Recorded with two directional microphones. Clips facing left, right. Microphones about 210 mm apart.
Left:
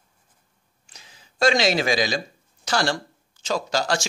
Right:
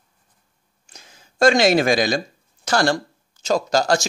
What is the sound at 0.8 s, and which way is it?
Speech, 45° right (ahead or behind).